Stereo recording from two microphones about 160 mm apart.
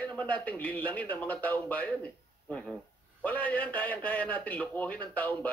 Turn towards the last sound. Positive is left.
turn(degrees=10)  # may be behind; listen again after turning